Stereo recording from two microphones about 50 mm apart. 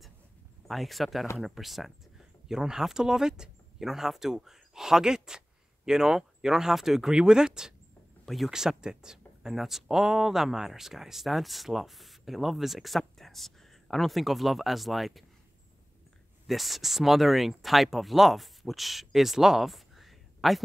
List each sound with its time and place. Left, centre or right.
0.7 s speech: centre
16.4 s speech: centre